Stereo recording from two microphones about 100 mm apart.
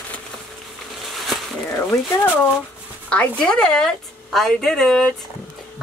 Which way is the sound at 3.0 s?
10° left (ahead or behind).